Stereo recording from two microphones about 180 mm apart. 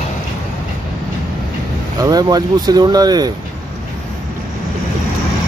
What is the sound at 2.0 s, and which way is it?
Speech, 20° right (ahead or behind).